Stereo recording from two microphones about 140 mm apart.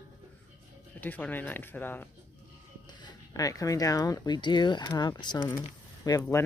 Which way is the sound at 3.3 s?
25° left (ahead or behind).